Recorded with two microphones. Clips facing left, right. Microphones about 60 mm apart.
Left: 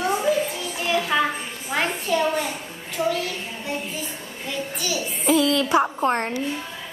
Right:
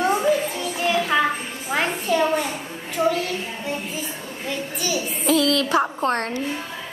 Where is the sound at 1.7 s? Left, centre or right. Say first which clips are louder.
Right 2 dB; centre.